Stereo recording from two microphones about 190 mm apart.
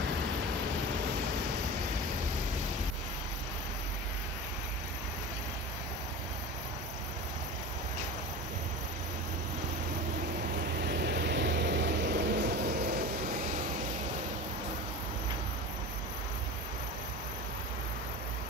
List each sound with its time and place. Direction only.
10.8 s vehicle: 60° right (ahead or behind)